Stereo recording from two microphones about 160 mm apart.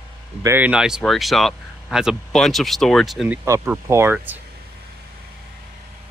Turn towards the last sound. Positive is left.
turn(degrees=-15)  # may be behind; listen again after turning